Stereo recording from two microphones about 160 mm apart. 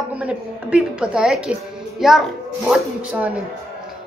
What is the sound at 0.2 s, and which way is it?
Speech, 5° right (ahead or behind).